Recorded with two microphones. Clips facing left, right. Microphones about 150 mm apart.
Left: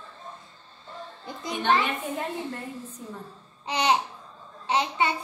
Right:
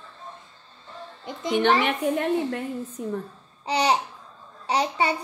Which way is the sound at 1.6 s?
75° right (ahead or behind).